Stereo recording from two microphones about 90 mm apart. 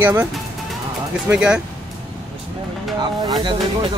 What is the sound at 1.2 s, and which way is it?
Speech, 10° right (ahead or behind).